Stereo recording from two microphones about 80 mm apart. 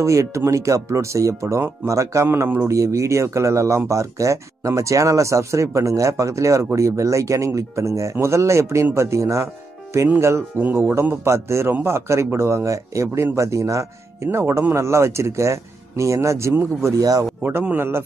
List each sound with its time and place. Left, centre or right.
0.0 s speech: right
10.6 s speech: right
11.2 s speech: right
16.8 s speech: right
17.4 s speech: right